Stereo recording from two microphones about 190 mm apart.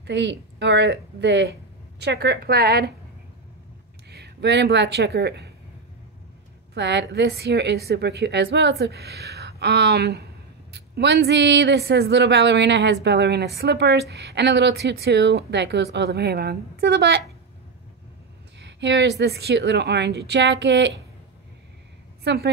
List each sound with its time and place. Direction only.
0.0 s speech: 65° right (ahead or behind)
4.1 s speech: 60° right (ahead or behind)
6.7 s speech: 65° right (ahead or behind)
18.6 s speech: 70° right (ahead or behind)
22.2 s a woman's voice: 65° right (ahead or behind)